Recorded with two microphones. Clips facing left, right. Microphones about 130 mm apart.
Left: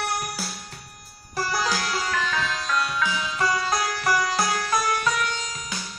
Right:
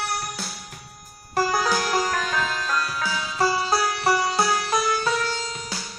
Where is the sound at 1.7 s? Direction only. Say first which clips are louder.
Right 4 dB; 45° right (ahead or behind).